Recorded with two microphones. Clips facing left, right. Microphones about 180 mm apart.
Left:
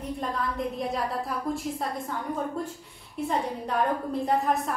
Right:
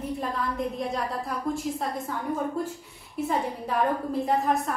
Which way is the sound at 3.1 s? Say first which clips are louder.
Right 1 dB; 5° right (ahead or behind).